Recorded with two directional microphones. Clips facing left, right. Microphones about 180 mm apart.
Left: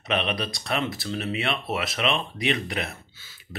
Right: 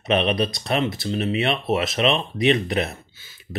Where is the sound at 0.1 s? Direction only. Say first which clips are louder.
Right 6 dB; 25° right (ahead or behind).